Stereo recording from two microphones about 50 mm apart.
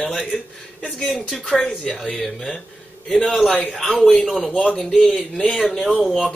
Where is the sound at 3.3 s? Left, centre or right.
Centre.